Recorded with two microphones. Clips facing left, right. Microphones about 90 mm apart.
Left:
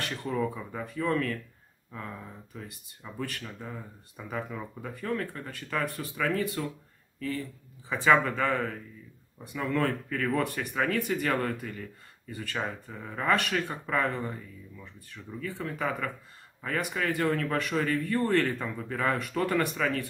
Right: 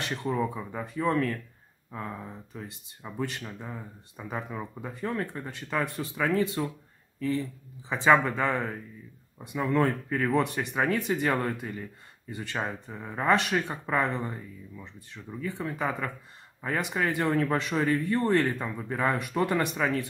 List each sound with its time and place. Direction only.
0.2 s speech: 25° right (ahead or behind)